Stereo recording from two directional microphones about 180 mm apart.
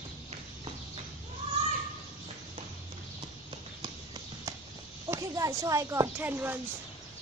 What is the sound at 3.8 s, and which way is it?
Clip-clop, 25° right (ahead or behind).